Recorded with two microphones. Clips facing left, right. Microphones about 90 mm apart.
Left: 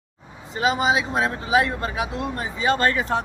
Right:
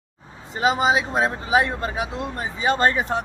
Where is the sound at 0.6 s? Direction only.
30° right (ahead or behind).